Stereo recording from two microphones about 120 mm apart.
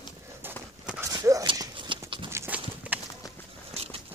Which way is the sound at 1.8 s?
45° right (ahead or behind).